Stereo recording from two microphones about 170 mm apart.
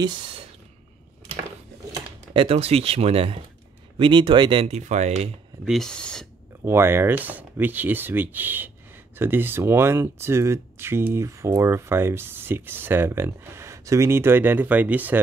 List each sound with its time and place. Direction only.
0.0 s speech: 30° right (ahead or behind)
1.9 s speech: 30° right (ahead or behind)
5.7 s speech: 5° left (ahead or behind)
6.6 s speech: 15° right (ahead or behind)